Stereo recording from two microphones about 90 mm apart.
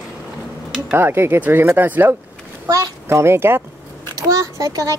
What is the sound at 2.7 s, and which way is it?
Speech, 35° right (ahead or behind).